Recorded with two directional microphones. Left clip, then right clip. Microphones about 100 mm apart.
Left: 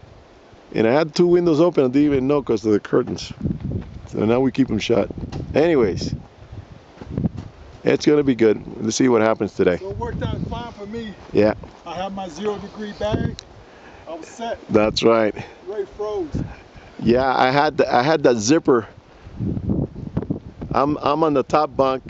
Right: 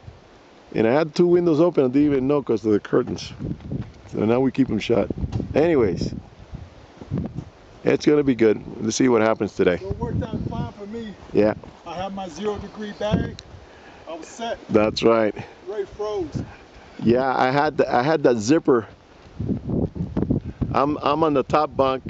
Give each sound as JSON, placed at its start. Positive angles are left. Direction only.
{"t": 0.7, "sound": "speech", "side_deg": 5}
{"t": 7.8, "sound": "speech", "side_deg": 5}
{"t": 20.7, "sound": "speech", "side_deg": 5}